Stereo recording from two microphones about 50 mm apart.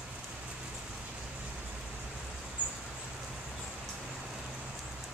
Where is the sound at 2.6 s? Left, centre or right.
Right.